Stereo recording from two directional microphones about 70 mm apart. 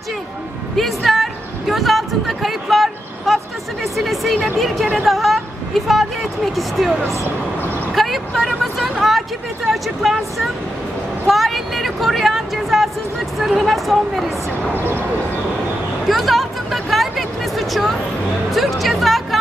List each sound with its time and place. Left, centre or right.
0.7 s a sound: centre
3.8 s speech: centre
7.9 s speech: centre
14.7 s speech: right
16.1 s a sound: centre
18.5 s music: centre